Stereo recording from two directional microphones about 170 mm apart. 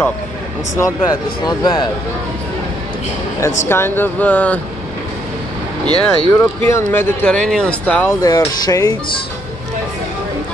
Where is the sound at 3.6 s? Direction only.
15° left (ahead or behind).